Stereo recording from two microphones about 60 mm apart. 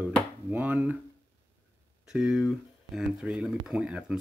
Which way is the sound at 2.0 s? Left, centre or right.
Centre.